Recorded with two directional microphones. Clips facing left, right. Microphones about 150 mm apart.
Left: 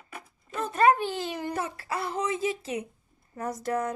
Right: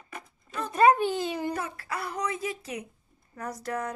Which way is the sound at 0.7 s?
15° right (ahead or behind).